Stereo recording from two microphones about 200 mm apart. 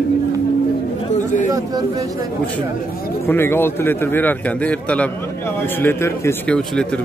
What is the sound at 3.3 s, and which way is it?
Speech, 10° left (ahead or behind).